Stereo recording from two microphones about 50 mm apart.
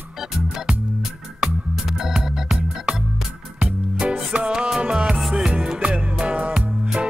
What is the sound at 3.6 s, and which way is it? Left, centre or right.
Music, centre.